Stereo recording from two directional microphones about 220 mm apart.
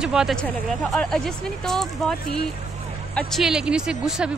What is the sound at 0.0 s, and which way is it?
Speech, 5° right (ahead or behind).